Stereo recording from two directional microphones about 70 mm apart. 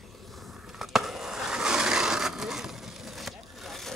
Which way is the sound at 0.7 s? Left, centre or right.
Centre.